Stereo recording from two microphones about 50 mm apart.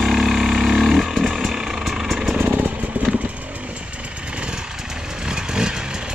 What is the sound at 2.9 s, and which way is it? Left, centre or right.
Vehicle, right.